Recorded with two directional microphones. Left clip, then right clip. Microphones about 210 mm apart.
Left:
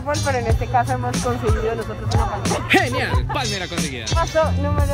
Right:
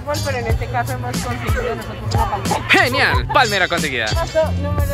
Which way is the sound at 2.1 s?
Centre (ahead or behind).